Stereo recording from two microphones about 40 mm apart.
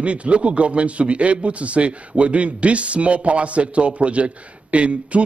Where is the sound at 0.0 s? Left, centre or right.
Right.